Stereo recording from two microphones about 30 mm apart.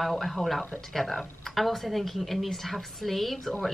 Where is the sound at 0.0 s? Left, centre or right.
Centre.